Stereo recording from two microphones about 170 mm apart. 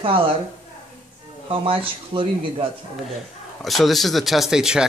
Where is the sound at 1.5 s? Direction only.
30° right (ahead or behind).